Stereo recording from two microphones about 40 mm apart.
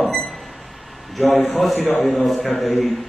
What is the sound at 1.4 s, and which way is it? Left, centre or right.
Speech, centre.